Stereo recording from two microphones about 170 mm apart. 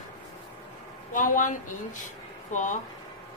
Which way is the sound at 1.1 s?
50° left (ahead or behind).